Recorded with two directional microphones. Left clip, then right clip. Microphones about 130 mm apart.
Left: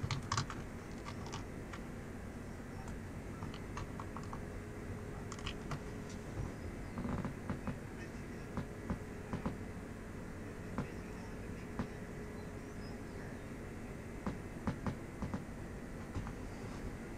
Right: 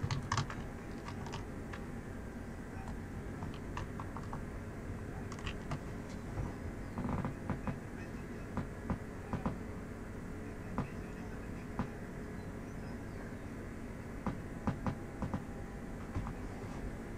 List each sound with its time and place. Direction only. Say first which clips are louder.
0.1 s typing: right 1 dB; 5° left (ahead or behind)